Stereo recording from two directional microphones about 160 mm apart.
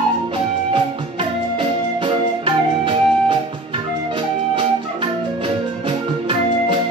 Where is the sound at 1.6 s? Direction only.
35° right (ahead or behind).